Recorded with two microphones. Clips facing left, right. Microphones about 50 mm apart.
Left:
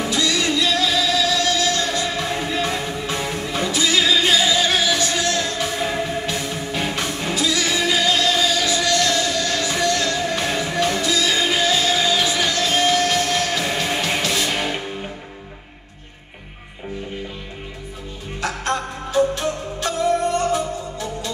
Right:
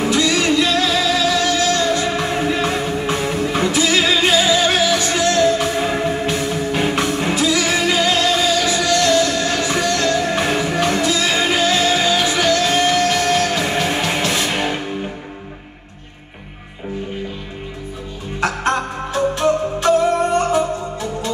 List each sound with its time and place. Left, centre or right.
0.0 s music: right
1.6 s music: right
5.8 s music: right
12.7 s music: right
18.4 s music: right